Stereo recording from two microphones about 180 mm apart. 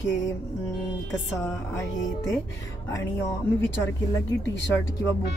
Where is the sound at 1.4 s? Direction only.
15° left (ahead or behind).